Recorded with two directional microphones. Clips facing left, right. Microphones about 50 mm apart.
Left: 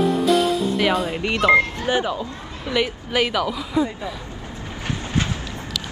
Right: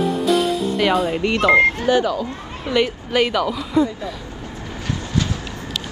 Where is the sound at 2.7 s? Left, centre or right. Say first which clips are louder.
Right 3 dB; centre.